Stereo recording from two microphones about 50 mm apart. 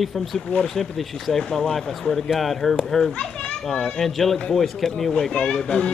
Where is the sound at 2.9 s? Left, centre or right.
Centre.